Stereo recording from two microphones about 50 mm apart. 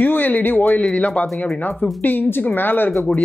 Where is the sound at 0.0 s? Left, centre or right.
Left.